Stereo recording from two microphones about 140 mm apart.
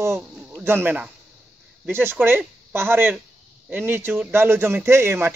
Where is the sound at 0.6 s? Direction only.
15° right (ahead or behind).